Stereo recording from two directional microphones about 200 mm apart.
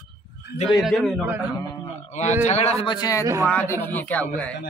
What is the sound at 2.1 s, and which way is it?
A man's voice, 35° left (ahead or behind).